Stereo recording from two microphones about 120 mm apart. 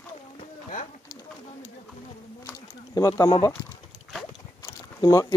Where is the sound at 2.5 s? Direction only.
30° left (ahead or behind).